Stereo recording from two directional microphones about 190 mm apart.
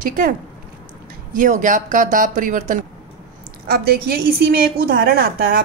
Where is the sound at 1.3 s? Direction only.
45° right (ahead or behind).